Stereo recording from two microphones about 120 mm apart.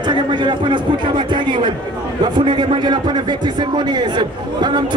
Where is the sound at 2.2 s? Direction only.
40° right (ahead or behind).